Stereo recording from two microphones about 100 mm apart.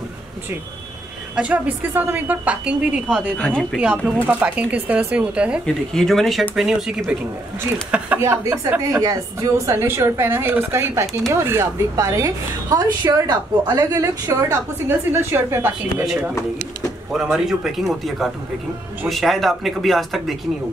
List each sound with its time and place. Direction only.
1.3 s a woman's voice: 10° right (ahead or behind)
3.3 s speech: 15° left (ahead or behind)
3.9 s a woman's voice: 15° right (ahead or behind)
5.9 s a woman's voice: 5° left (ahead or behind)
8.2 s a woman's voice: 25° right (ahead or behind)
8.9 s a woman's voice: 35° right (ahead or behind)
16.1 s speech: 5° right (ahead or behind)